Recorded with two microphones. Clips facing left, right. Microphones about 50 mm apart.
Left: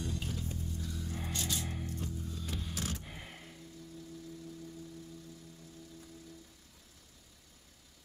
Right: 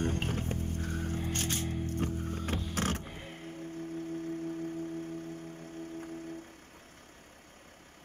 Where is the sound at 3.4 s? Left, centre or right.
Right.